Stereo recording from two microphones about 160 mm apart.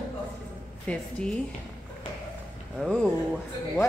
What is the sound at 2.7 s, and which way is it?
Speech, centre (ahead or behind).